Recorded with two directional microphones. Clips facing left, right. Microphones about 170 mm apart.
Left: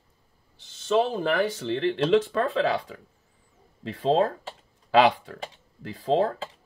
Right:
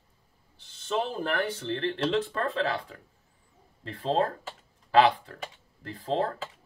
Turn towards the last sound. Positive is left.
turn(degrees=90)